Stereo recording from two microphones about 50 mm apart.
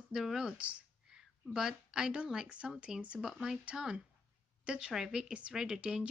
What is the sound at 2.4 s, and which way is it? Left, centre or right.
Speech, right.